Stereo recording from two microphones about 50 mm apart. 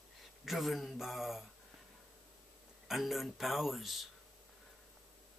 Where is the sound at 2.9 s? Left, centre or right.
Centre.